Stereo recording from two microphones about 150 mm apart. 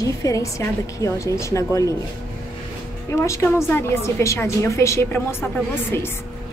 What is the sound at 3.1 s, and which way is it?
A woman's voice, 20° left (ahead or behind).